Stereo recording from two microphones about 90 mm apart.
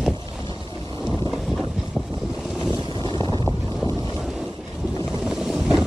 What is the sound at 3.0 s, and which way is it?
Boat, 65° right (ahead or behind).